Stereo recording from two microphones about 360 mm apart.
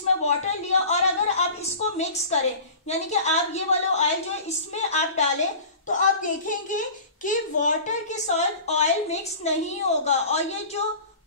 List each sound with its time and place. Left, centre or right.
0.2 s a woman's voice: centre